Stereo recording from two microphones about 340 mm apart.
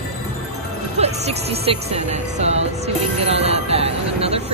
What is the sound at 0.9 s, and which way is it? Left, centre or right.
Speech, centre.